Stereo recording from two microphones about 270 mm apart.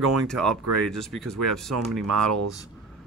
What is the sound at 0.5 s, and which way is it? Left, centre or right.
Speech, right.